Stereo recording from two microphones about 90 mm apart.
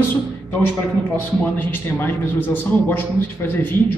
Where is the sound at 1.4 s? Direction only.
20° left (ahead or behind).